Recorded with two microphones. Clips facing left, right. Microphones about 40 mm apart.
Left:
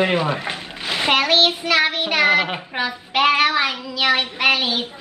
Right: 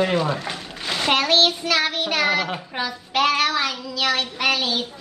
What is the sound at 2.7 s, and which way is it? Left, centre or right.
Child singing, left.